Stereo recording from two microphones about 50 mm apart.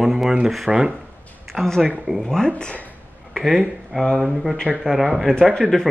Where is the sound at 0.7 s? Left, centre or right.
Centre.